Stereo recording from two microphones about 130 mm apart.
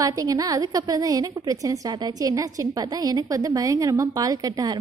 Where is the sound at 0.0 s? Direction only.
25° right (ahead or behind).